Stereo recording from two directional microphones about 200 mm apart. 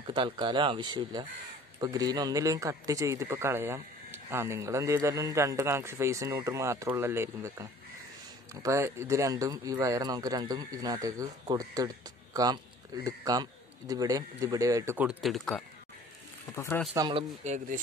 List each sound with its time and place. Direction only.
0.0 s a man's voice: 25° right (ahead or behind)
8.6 s a man's voice: 15° right (ahead or behind)
13.0 s a man's voice: 20° right (ahead or behind); by 16.8 s 10° left (ahead or behind)
16.9 s speech: 20° right (ahead or behind)
17.4 s speech: 35° right (ahead or behind)